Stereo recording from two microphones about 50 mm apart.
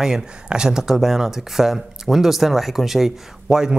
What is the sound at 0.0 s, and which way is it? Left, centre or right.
Speech, centre.